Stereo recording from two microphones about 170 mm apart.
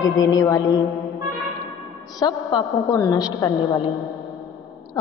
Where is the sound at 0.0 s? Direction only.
20° left (ahead or behind).